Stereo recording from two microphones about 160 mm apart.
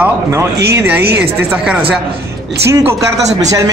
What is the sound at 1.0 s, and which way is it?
Speech, 90° right.